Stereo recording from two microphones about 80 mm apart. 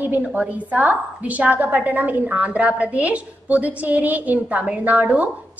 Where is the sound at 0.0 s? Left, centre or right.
Right.